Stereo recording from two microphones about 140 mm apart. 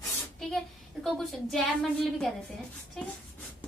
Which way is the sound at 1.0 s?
5° left (ahead or behind).